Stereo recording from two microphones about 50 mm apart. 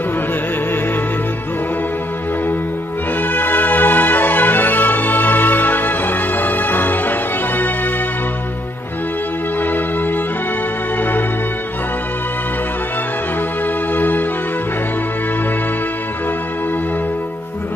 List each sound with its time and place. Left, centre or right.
3.2 s music: left
11.0 s music: left
13.9 s music: left